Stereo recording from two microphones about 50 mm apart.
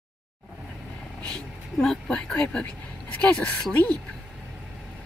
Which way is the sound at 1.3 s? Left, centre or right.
Centre.